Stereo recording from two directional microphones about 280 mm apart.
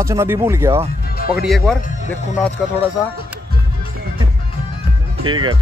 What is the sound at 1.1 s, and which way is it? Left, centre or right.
Speech, left.